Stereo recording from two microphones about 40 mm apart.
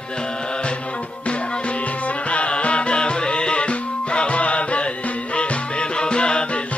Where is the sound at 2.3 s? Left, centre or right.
Left.